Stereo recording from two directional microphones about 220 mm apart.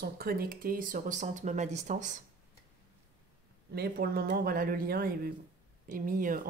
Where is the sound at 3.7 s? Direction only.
45° right (ahead or behind).